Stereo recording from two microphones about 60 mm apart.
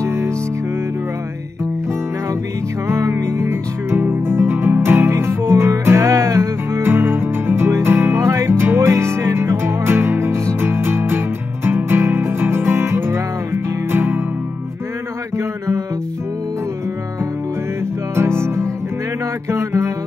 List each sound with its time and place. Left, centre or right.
0.0 s music: right
2.9 s music: right
15.3 s mantra: right
18.1 s music: right